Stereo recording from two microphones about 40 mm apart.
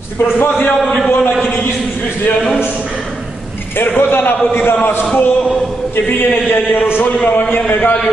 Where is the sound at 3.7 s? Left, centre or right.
Left.